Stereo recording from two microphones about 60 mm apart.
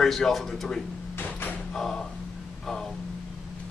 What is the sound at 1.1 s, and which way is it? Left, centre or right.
Door, left.